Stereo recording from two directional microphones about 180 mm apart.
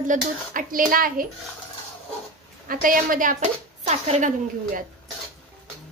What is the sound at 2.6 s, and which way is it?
A woman's voice, 50° right (ahead or behind).